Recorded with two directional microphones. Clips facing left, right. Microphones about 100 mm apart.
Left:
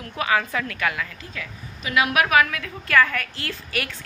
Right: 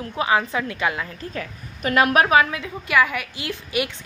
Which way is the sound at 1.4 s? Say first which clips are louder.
Right 3 dB; 45° right (ahead or behind).